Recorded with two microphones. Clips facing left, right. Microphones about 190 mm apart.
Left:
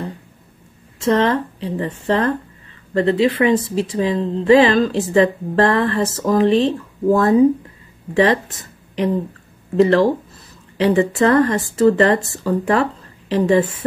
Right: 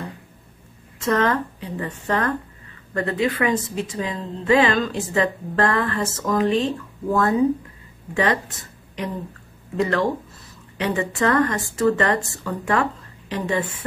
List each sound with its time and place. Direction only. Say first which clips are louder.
1.0 s a woman's voice: left 4 dB; 30° left (ahead or behind)
9.8 s a woman's voice: left 8 dB; 30° left (ahead or behind)